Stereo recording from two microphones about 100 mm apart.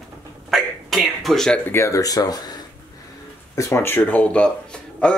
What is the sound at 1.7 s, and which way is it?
Speech, 30° left (ahead or behind).